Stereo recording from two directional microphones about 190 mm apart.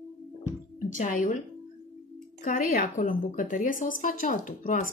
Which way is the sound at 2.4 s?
45° left (ahead or behind).